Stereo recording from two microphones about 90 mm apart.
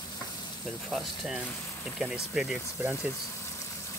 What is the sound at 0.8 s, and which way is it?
Speech, 5° right (ahead or behind).